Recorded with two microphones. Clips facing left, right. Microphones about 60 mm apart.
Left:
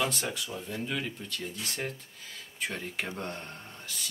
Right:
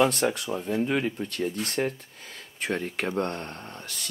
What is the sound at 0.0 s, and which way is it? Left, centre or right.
Speech, right.